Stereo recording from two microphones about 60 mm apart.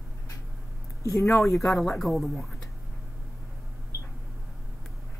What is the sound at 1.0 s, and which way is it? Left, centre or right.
Speech, left.